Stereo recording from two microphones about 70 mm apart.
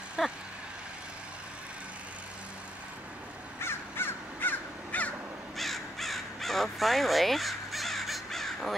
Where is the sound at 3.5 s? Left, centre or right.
Left.